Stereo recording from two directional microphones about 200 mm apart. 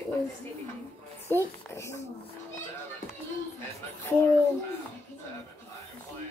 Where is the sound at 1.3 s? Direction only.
15° left (ahead or behind).